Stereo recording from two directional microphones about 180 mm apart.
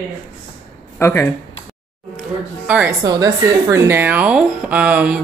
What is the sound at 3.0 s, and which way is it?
Speech, 20° right (ahead or behind).